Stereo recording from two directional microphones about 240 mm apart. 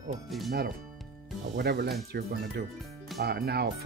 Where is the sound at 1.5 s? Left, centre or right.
Right.